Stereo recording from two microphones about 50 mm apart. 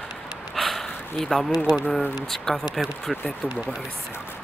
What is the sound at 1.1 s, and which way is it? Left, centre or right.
Speech, centre.